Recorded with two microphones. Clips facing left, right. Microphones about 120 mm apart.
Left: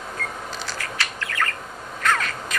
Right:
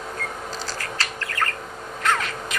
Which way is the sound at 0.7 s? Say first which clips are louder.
Even; 35° right (ahead or behind).